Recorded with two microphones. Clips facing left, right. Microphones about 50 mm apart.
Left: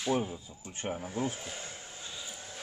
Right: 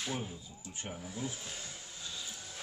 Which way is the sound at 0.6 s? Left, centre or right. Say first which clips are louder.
Left 7 dB; left.